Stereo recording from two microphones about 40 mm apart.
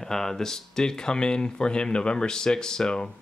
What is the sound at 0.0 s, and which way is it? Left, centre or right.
Speech, centre.